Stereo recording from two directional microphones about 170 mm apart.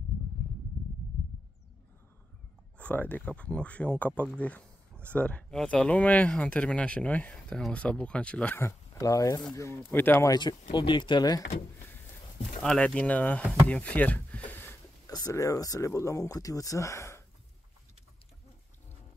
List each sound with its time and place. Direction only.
2.8 s speech: 10° left (ahead or behind)
10.7 s speech: 25° left (ahead or behind)
12.6 s speech: 5° left (ahead or behind)